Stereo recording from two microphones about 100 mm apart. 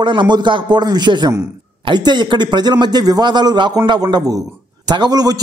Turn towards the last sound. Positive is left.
turn(degrees=-40)  # may be behind; listen again after turning